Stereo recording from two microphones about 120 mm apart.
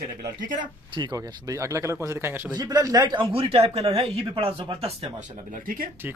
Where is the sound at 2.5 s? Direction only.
35° right (ahead or behind); by 5.1 s 50° right (ahead or behind).